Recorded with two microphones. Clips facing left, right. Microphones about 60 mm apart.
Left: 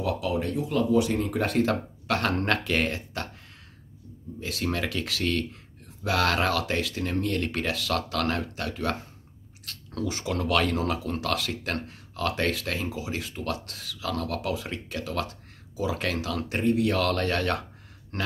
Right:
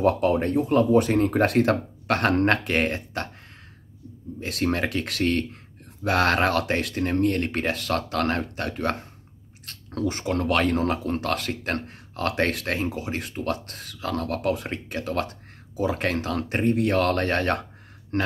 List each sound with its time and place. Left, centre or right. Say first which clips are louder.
0.0 s speech: right 7 dB; right
4.4 s speech: right 4 dB; right